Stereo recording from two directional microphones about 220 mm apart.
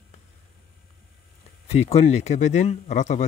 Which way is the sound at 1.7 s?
30° left (ahead or behind).